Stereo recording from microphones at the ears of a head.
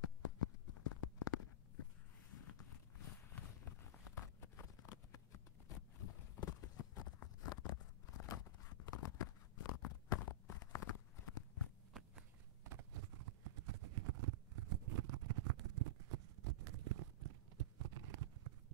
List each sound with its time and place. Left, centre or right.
0.0 s a sound: left
2.3 s walk: left
4.8 s clip-clop: left
12.2 s clip-clop: right